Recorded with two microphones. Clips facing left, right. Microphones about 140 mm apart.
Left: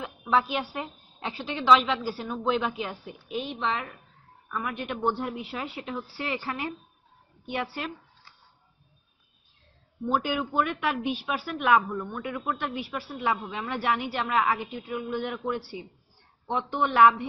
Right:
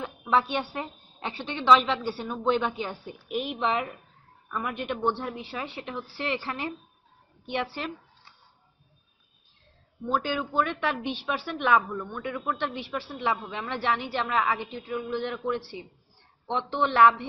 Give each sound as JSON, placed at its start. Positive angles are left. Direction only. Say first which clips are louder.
{"t": 0.0, "sound": "a woman's voice", "louder": "even", "side_deg": 0}
{"t": 3.5, "sound": "a woman's voice", "louder": "right 5 dB", "side_deg": -20}
{"t": 4.5, "sound": "a woman's voice", "louder": "right 1 dB", "side_deg": 0}
{"t": 10.0, "sound": "speech", "louder": "left 1 dB", "side_deg": 15}
{"t": 10.5, "sound": "a woman's voice", "louder": "right 1 dB", "side_deg": 5}
{"t": 16.8, "sound": "speech", "louder": "even", "side_deg": 10}